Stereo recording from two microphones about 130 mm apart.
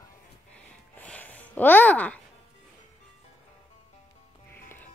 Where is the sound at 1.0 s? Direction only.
10° left (ahead or behind).